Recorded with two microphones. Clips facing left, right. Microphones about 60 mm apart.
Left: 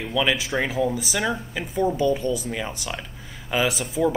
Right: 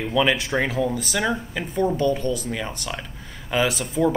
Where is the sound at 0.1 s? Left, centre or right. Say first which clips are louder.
Right 2 dB; centre.